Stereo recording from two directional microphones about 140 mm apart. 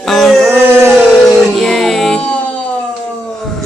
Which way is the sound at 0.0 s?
Centre (ahead or behind).